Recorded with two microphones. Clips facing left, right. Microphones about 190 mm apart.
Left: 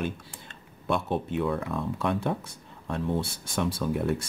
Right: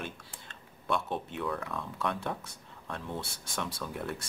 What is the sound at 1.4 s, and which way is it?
Speech, 25° left (ahead or behind).